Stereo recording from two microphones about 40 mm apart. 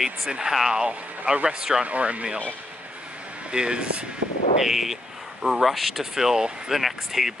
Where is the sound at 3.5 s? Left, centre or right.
Right.